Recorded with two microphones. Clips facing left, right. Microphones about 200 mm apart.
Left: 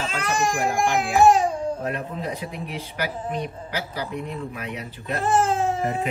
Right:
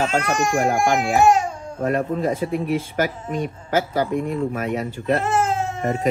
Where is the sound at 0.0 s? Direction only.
45° right (ahead or behind).